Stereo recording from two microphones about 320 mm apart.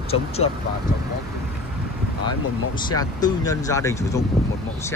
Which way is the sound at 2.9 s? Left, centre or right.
Centre.